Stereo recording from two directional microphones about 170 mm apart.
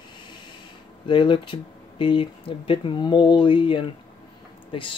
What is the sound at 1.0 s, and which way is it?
Speech, 30° left (ahead or behind).